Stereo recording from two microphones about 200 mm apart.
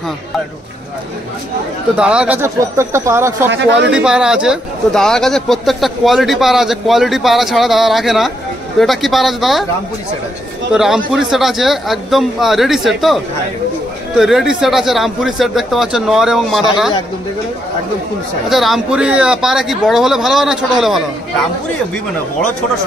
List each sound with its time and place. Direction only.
2.0 s speech: 5° right (ahead or behind)
3.5 s speech: 60° right (ahead or behind)
3.9 s speech: 5° right (ahead or behind)
10.7 s speech: 5° right (ahead or behind)
18.5 s speech: centre (ahead or behind)